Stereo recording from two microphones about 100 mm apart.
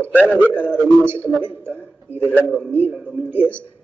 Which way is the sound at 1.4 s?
20° right (ahead or behind).